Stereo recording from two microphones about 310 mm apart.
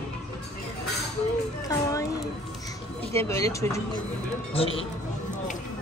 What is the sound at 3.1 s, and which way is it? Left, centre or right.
Speech, centre.